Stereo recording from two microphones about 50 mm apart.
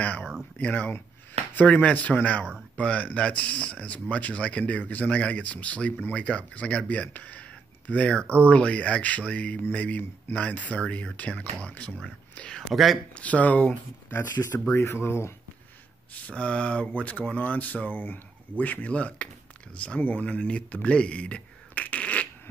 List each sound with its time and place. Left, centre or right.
0.2 s a sound: centre
0.6 s speech: left
12.4 s a sound: left
12.7 s speech: centre
13.1 s speech: left
14.9 s speech: left
16.1 s speech: left